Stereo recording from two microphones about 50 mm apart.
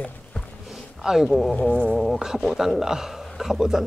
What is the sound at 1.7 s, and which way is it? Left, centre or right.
Speech, centre.